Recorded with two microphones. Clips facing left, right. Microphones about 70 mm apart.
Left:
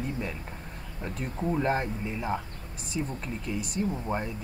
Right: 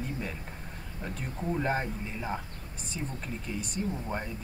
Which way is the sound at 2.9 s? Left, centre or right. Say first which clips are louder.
Left 4 dB; centre.